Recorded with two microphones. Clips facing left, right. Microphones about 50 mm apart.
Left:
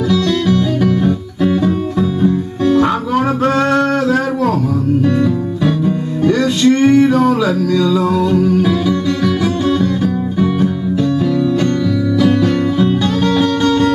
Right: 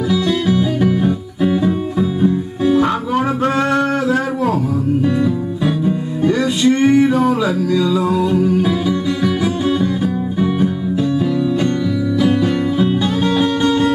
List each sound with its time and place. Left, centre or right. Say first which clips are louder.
0.1 s music: left 2 dB; centre
5.6 s music: left 2 dB; centre
12.2 s music: left 2 dB; centre